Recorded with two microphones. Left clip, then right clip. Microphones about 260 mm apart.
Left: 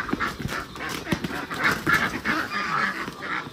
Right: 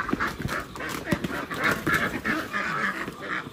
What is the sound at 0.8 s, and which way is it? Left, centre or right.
Duck, centre.